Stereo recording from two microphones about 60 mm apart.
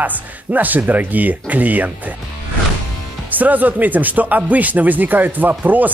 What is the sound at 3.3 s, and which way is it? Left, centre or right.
Speech, right.